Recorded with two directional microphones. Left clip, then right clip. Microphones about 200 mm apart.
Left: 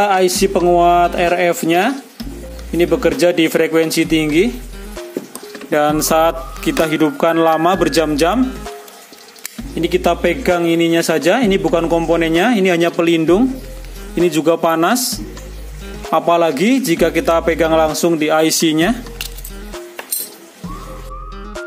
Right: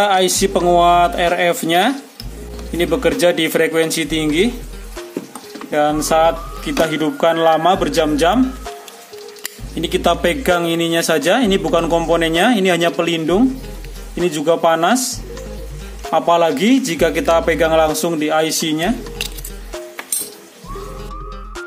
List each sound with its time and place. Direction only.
0.0 s speech: 10° left (ahead or behind)
5.7 s speech: 35° left (ahead or behind)
9.8 s a man's voice: 15° left (ahead or behind)
18.5 s speech: 40° left (ahead or behind)